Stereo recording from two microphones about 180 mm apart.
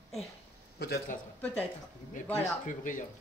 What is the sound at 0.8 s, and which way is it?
Speech, 60° left (ahead or behind).